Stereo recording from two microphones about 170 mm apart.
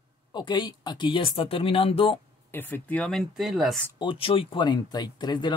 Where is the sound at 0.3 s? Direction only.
25° left (ahead or behind).